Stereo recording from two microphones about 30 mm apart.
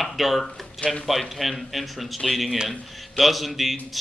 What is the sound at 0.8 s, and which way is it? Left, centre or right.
Speech, left.